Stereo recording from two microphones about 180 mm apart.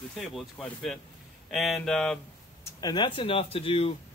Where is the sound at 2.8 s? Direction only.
25° left (ahead or behind).